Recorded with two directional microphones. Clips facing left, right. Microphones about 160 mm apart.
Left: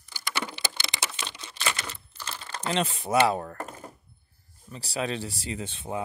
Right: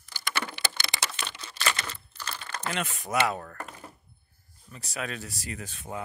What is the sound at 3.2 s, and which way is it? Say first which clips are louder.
Speech: left 5 dB; 30° left (ahead or behind).